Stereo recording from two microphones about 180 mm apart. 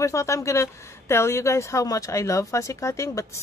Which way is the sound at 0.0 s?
15° left (ahead or behind).